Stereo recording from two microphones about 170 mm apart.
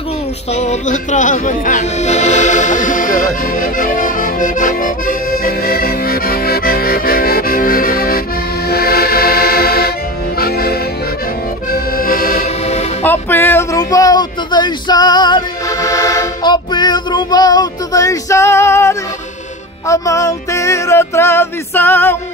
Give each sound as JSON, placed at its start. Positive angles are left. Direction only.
{"t": 0.6, "sound": "speech", "side_deg": 45}
{"t": 8.6, "sound": "music", "side_deg": 65}
{"t": 11.7, "sound": "accordion", "side_deg": 55}
{"t": 13.0, "sound": "music", "side_deg": 10}